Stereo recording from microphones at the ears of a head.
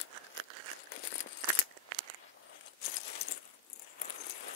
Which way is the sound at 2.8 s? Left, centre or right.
Left.